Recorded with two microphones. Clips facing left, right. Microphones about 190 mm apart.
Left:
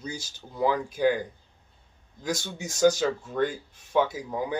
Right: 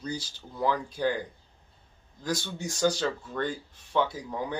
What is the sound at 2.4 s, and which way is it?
Speech, 10° left (ahead or behind).